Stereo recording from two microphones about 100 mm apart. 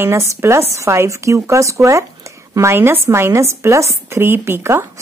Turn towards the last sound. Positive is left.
turn(degrees=-25)  # may be behind; listen again after turning